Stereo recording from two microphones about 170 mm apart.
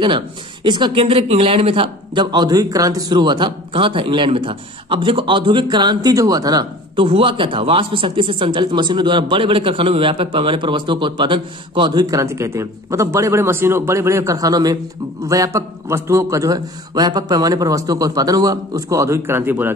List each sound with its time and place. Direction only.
0.7 s speech: 25° right (ahead or behind)